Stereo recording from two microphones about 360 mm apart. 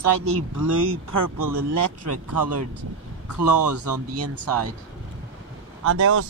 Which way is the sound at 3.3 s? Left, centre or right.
Right.